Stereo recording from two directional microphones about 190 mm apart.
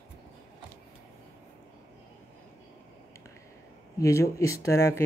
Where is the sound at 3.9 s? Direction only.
15° left (ahead or behind).